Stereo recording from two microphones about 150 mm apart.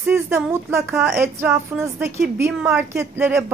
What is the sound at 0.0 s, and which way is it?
Speech, 15° right (ahead or behind).